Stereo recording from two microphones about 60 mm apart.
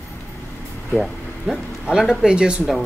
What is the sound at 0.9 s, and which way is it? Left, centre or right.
Vehicle, centre.